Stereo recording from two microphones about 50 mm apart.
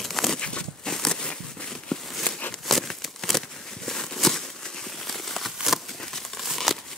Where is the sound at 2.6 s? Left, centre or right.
Centre.